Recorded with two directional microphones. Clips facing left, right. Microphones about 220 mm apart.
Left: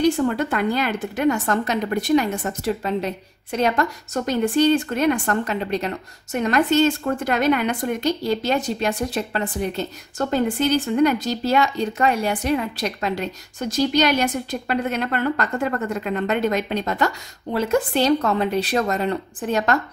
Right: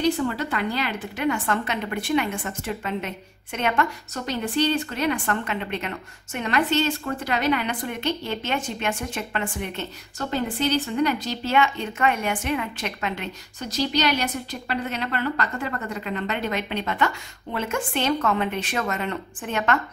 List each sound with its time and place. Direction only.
0.3 s speech: 45° left (ahead or behind)